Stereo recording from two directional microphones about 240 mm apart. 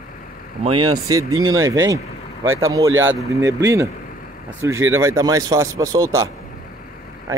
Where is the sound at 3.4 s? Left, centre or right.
Centre.